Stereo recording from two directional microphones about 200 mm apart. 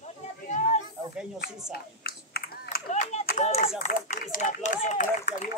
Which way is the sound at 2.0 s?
50° left (ahead or behind).